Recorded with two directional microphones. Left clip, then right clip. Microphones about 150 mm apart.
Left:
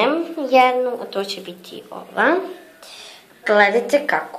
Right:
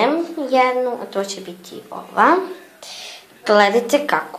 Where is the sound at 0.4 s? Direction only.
15° left (ahead or behind).